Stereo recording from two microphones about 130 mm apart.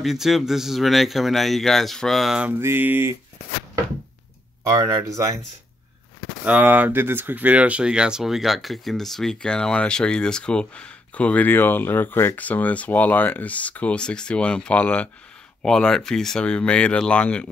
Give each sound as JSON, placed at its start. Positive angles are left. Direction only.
{"t": 0.0, "sound": "speech", "side_deg": 0}
{"t": 2.6, "sound": "mantra", "side_deg": -15}
{"t": 4.6, "sound": "speech", "side_deg": -25}
{"t": 6.4, "sound": "speech", "side_deg": -15}